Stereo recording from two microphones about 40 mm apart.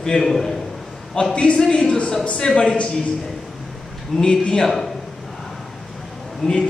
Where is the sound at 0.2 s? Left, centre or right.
Centre.